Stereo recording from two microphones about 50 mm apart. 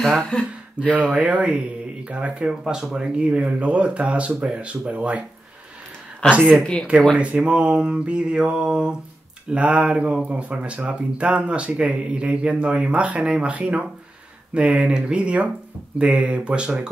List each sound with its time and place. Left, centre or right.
0.3 s speech: left
0.8 s speech: right
2.6 s speech: centre
6.6 s speech: centre
7.2 s speech: right